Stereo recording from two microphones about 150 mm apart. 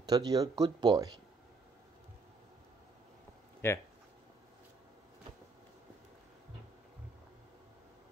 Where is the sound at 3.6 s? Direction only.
15° left (ahead or behind).